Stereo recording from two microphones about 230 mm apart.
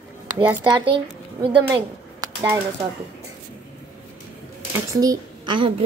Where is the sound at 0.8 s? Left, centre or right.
Right.